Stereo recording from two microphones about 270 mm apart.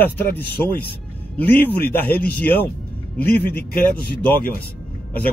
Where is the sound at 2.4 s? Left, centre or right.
Centre.